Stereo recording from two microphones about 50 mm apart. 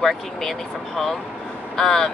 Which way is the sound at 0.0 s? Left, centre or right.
Centre.